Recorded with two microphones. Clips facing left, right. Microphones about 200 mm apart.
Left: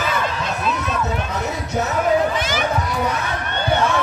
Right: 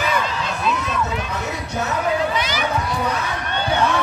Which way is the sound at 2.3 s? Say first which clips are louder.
Left 1 dB; 50° left (ahead or behind).